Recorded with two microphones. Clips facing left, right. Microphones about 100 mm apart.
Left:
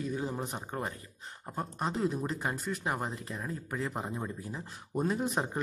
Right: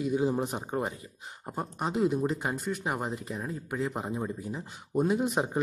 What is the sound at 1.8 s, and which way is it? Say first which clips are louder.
A man's voice: right 5 dB; 5° right (ahead or behind).